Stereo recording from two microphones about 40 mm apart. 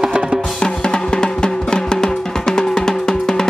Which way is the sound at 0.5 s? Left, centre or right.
Centre.